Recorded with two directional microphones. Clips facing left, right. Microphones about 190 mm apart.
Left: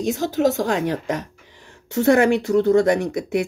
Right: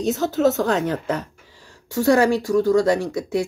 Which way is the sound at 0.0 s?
15° left (ahead or behind).